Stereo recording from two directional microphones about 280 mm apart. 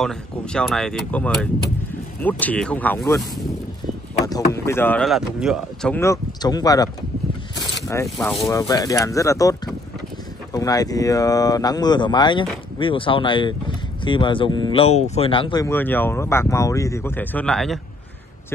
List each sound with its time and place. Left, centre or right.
0.0 s speech: centre
4.3 s speech: centre